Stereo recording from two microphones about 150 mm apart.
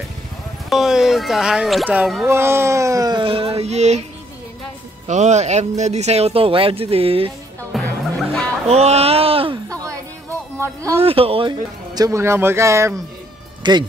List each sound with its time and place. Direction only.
0.7 s speech: 5° right (ahead or behind)
2.2 s speech: 15° right (ahead or behind); by 4.0 s 50° right (ahead or behind)
5.0 s speech: 50° right (ahead or behind)
7.7 s music: centre (ahead or behind)
8.6 s speech: 45° right (ahead or behind)
9.7 s a sound: 20° right (ahead or behind)
10.6 s speech: 20° right (ahead or behind)
11.0 s speech: 40° right (ahead or behind); by 12.9 s 20° right (ahead or behind)
13.6 s music: 30° right (ahead or behind)